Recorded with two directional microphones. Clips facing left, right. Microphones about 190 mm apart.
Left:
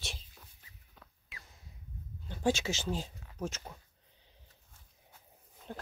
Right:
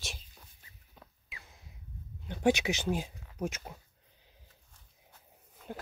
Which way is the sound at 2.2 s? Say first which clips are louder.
Right 4 dB; 20° right (ahead or behind).